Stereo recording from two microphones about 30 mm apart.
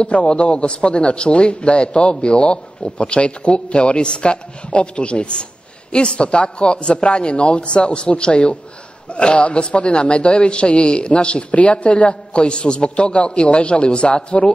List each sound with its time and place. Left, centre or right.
0.0 s a man's voice: left